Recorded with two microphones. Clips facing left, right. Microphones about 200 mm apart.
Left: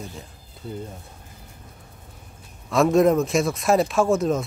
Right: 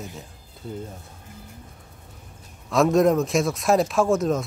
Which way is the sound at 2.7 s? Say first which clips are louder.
Left 1 dB; centre (ahead or behind).